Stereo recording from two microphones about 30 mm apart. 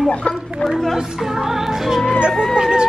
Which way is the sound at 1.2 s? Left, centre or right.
Centre.